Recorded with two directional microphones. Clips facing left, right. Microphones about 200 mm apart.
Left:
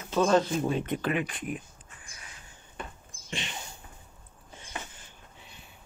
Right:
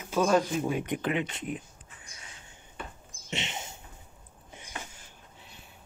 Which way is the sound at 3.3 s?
25° right (ahead or behind).